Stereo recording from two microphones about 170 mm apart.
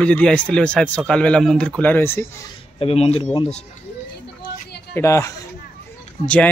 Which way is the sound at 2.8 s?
35° left (ahead or behind).